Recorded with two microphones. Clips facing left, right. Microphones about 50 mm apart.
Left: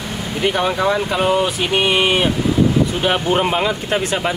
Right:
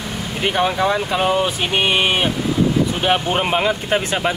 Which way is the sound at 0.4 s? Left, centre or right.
Centre.